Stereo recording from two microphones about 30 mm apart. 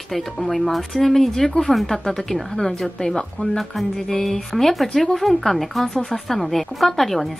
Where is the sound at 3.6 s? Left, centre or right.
Centre.